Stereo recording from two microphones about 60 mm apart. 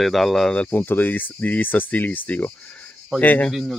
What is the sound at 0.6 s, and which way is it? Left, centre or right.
Speech, left.